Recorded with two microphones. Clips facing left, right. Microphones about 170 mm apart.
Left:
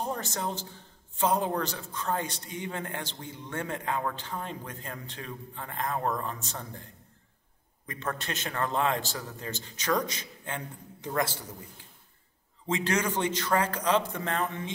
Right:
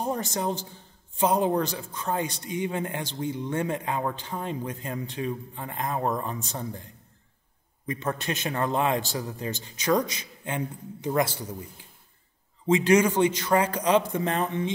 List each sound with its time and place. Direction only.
0.0 s a man's voice: 15° right (ahead or behind)
7.8 s a man's voice: 15° right (ahead or behind)
12.6 s a man's voice: 15° right (ahead or behind)